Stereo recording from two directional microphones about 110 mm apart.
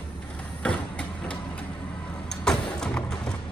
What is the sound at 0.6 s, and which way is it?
Vehicle, 10° left (ahead or behind).